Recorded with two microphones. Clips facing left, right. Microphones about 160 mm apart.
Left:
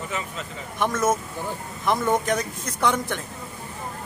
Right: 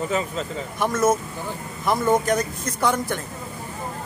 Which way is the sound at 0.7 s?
5° right (ahead or behind).